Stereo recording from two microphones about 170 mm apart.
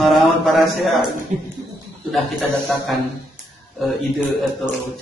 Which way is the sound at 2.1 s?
Centre (ahead or behind).